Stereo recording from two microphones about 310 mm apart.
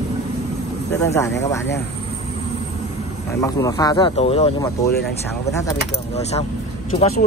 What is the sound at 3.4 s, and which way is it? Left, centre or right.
Speech, centre.